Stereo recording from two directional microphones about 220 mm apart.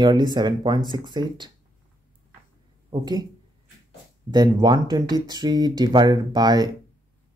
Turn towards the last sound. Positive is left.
turn(degrees=-20)  # may be behind; listen again after turning